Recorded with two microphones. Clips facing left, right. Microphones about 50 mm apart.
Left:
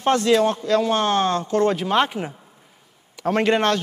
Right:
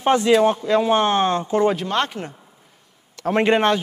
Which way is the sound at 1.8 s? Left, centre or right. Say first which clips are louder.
Left 3 dB; centre.